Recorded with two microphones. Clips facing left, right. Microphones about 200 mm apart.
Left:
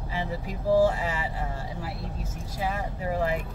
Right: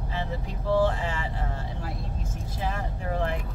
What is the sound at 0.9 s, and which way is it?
Speech, 10° left (ahead or behind).